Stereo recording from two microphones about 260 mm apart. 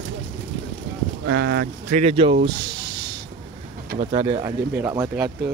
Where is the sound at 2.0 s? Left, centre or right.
Right.